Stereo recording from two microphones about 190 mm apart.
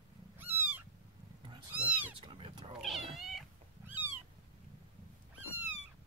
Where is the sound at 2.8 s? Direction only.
Centre (ahead or behind).